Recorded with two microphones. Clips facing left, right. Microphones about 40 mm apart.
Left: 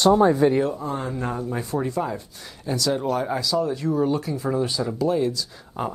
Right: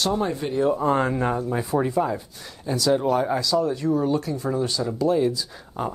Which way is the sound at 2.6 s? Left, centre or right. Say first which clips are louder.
Right 3 dB; centre.